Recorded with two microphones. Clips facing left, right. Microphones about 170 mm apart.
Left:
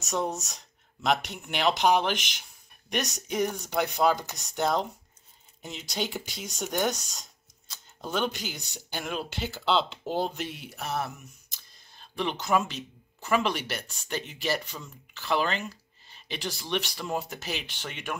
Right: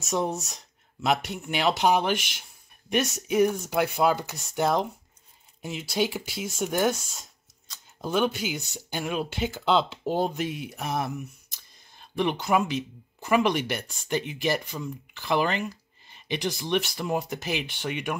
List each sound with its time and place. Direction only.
0.0 s speech: 10° right (ahead or behind)
12.2 s speech: 10° right (ahead or behind)
13.5 s speech: 50° right (ahead or behind)
13.8 s speech: 10° right (ahead or behind)